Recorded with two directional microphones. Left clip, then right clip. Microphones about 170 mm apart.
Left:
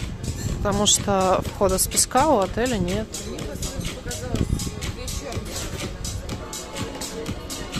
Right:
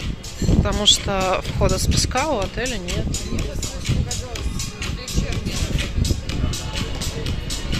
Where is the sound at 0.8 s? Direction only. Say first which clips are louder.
Right 3 dB; 35° left (ahead or behind).